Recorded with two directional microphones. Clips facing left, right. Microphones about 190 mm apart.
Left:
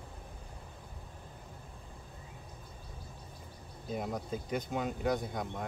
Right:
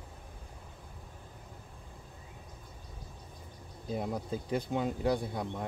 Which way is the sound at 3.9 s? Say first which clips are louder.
Right 2 dB; 30° right (ahead or behind).